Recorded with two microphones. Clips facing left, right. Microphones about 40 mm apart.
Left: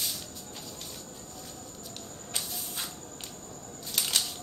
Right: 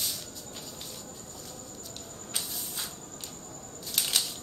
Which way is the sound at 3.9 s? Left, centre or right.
Centre.